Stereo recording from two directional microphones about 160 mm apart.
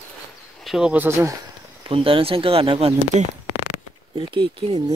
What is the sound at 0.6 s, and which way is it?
Speech, centre (ahead or behind).